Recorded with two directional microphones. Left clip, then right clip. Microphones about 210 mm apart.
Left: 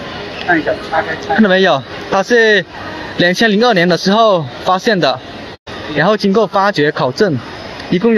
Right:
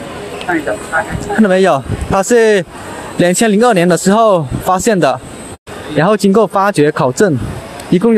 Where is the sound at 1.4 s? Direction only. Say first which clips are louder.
Right 1 dB; 15° right (ahead or behind).